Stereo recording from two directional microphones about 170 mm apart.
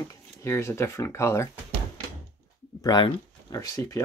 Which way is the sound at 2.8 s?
25° left (ahead or behind).